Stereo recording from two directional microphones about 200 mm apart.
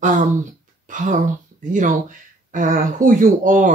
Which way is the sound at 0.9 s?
40° right (ahead or behind).